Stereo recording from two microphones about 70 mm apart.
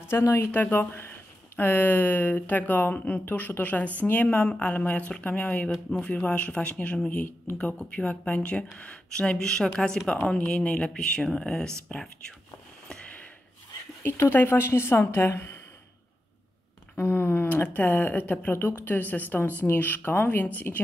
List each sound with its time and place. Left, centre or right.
0.3 s speech: left; by 12.4 s centre
12.8 s a sound: centre
14.3 s a woman's voice: left
16.9 s speech: left